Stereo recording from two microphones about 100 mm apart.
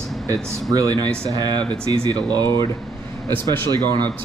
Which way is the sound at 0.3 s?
35° right (ahead or behind).